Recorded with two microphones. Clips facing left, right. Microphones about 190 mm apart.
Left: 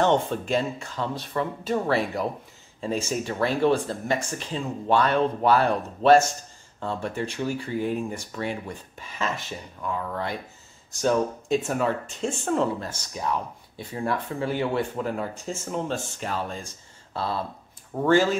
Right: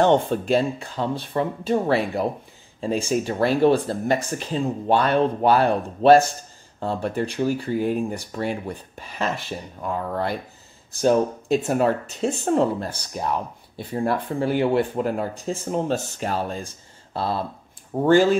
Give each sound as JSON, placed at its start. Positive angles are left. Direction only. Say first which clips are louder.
{"t": 0.0, "sound": "speech", "louder": "right 4 dB", "side_deg": -35}
{"t": 11.6, "sound": "speech", "louder": "right 5 dB", "side_deg": -35}